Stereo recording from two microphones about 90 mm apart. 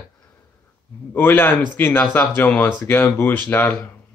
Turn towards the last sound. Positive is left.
turn(degrees=20)  # may be behind; listen again after turning